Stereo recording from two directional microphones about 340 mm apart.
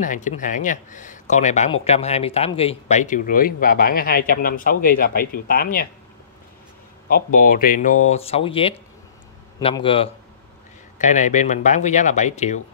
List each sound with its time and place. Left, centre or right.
0.0 s speech: left
7.1 s a man's voice: left